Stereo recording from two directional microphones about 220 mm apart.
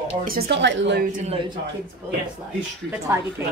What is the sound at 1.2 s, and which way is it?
Speech, 25° right (ahead or behind).